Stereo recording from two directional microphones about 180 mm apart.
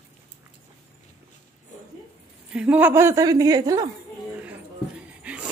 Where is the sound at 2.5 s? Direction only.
5° right (ahead or behind).